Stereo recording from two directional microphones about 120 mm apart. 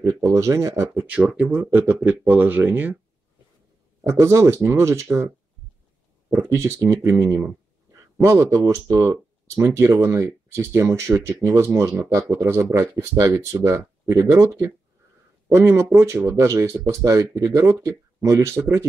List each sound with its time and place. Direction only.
0.0 s speech: 25° right (ahead or behind)
4.1 s speech: 25° right (ahead or behind)
6.3 s speech: 25° right (ahead or behind)